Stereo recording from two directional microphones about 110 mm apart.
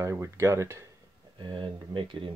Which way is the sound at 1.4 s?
50° right (ahead or behind).